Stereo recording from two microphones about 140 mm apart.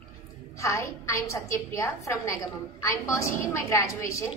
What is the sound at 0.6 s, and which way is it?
A woman's voice, 20° left (ahead or behind).